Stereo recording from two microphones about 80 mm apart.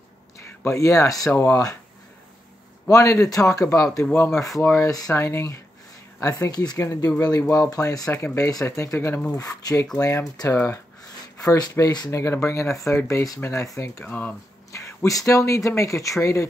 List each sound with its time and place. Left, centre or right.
0.7 s speech: left
1.3 s speech: left
2.9 s speech: left
4.0 s speech: left
4.3 s speech: centre
4.7 s speech: left
5.1 s speech: left
6.8 s speech: left
9.4 s speech: left
11.4 s speech: left
12.1 s speech: left
14.0 s speech: left
14.7 s a sound: left
15.0 s speech: left